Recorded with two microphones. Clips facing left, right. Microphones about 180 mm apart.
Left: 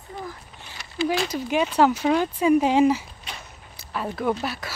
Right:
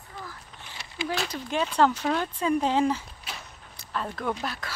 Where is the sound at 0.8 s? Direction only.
30° right (ahead or behind).